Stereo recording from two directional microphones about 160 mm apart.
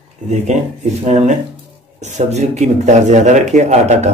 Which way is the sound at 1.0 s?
45° right (ahead or behind).